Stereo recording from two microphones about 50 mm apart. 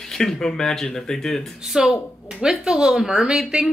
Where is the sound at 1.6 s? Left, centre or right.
Centre.